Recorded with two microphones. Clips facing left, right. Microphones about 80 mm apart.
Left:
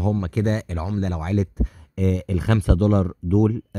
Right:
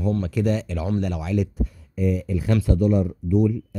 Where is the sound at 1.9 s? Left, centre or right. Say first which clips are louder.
Left 1 dB; left.